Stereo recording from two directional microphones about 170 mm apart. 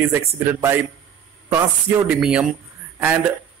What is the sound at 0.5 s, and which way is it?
Speech, 20° right (ahead or behind).